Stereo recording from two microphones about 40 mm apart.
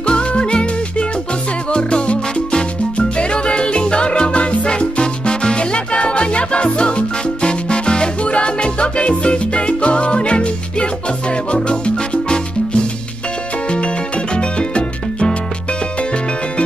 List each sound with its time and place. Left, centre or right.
0.0 s music: left
1.7 s salsa music: left
13.7 s music: left